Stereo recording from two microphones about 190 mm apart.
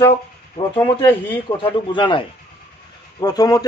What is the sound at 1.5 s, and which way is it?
A man's voice, 25° left (ahead or behind).